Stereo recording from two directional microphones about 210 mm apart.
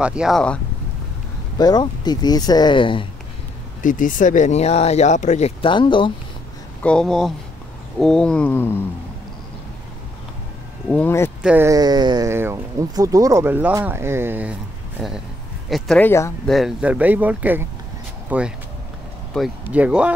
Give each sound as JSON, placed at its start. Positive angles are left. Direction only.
{"t": 0.0, "sound": "roaring cats", "side_deg": -5}
{"t": 1.6, "sound": "speech", "side_deg": 20}
{"t": 3.8, "sound": "speech", "side_deg": 40}
{"t": 6.8, "sound": "roaring cats", "side_deg": 5}
{"t": 10.9, "sound": "speech", "side_deg": 10}
{"t": 11.4, "sound": "speech", "side_deg": -10}
{"t": 16.4, "sound": "speech", "side_deg": 0}
{"t": 19.3, "sound": "roaring cats", "side_deg": -5}